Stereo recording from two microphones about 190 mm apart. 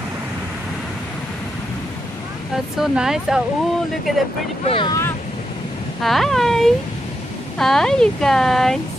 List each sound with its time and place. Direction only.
2.5 s speech: centre (ahead or behind)
4.6 s speech: 25° left (ahead or behind)
6.0 s speech: centre (ahead or behind)